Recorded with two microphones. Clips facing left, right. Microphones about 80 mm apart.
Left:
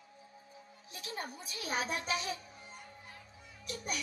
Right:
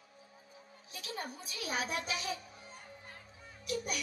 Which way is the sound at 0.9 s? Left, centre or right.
Left.